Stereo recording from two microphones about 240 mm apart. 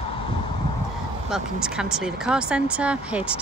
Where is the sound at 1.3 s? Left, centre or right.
Centre.